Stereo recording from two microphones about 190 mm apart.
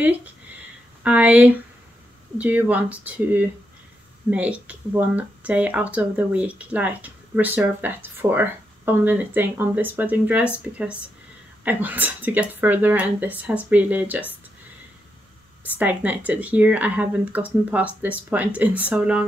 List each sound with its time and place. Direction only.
0.0 s speech: 10° right (ahead or behind)
15.6 s speech: 10° right (ahead or behind)